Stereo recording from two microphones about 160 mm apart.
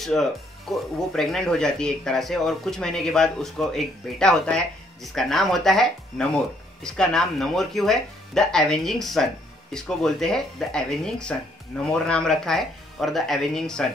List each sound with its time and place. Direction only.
0.0 s speech: centre (ahead or behind)